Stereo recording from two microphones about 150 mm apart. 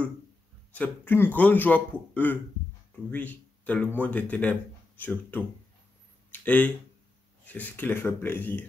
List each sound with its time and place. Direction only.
0.7 s a man's voice: 15° left (ahead or behind)